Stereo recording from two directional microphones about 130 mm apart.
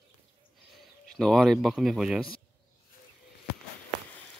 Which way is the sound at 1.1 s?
Centre (ahead or behind).